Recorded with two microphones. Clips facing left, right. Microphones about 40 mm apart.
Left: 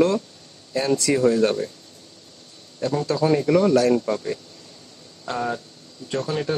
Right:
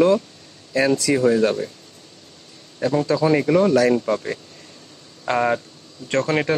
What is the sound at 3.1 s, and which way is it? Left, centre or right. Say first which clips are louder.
Speech: right 1 dB; right.